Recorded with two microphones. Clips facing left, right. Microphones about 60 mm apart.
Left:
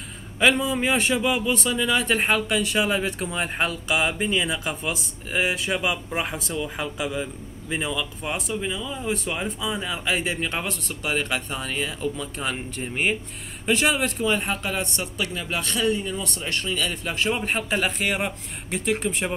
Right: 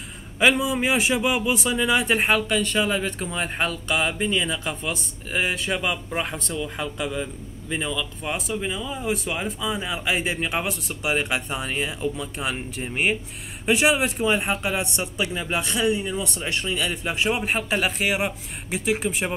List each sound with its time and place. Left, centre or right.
0.4 s a man's voice: centre